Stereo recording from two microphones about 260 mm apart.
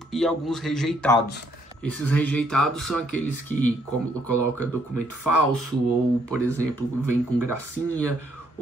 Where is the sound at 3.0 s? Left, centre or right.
Right.